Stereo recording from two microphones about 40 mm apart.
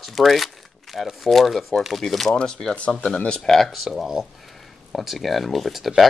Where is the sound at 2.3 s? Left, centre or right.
Left.